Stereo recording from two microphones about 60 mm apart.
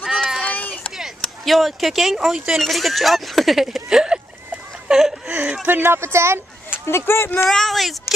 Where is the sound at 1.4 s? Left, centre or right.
Centre.